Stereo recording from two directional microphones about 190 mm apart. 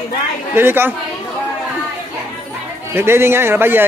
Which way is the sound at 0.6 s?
10° right (ahead or behind).